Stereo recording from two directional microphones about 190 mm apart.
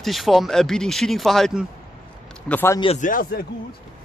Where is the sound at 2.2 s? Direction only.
5° left (ahead or behind).